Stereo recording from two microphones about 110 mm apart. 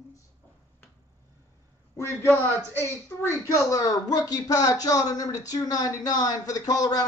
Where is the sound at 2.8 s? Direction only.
25° left (ahead or behind).